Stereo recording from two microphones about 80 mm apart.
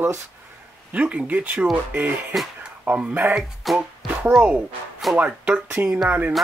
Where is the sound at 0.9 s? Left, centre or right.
Centre.